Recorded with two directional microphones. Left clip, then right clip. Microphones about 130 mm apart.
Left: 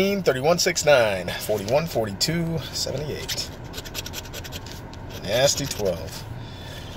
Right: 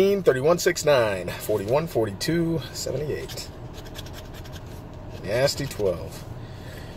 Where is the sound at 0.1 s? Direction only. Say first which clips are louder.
Right 1 dB; 35° right (ahead or behind).